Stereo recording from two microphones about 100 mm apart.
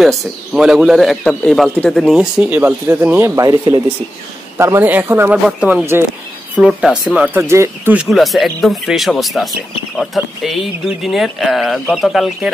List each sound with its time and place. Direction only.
0.0 s a man's voice: centre (ahead or behind)
2.1 s a man's voice: 10° right (ahead or behind)
3.3 s speech: 35° right (ahead or behind)
4.6 s a man's voice: 25° right (ahead or behind)
5.3 s speech: 10° right (ahead or behind)
7.2 s a man's voice: 25° right (ahead or behind)
8.1 s a man's voice: centre (ahead or behind)